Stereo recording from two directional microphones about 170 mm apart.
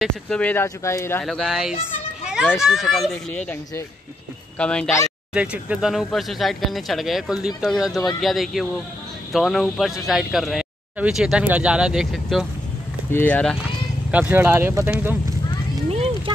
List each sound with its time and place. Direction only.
0.0 s speech: 5° left (ahead or behind)
1.2 s speech: centre (ahead or behind)
2.2 s run: 5° right (ahead or behind)
2.6 s speech: centre (ahead or behind)
5.3 s speech: 5° right (ahead or behind)
13.1 s speech: 10° left (ahead or behind)
14.1 s speech: 10° right (ahead or behind)
15.9 s a sound: 35° right (ahead or behind)